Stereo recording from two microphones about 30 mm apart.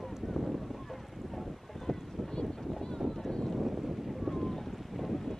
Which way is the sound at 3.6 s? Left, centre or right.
Centre.